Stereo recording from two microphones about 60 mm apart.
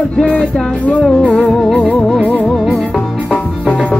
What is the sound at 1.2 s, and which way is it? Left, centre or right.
Music, left.